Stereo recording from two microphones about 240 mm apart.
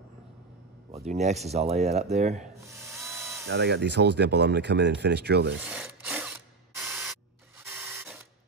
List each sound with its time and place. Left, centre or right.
1.0 s speech: right
2.7 s drill: centre
3.1 s ratchet: centre
3.4 s speech: right
5.6 s tools: centre
7.6 s printer: centre